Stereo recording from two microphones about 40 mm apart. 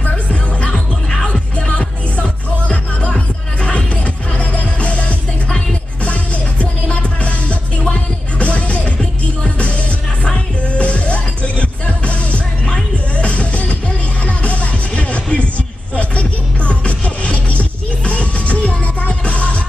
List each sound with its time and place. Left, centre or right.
0.0 s music: left